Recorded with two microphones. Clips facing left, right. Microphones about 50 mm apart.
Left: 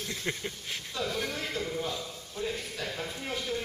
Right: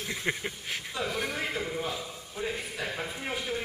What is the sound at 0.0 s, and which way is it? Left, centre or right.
A man's voice, right.